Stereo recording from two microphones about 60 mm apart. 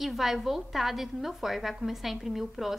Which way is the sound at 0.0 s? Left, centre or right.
Centre.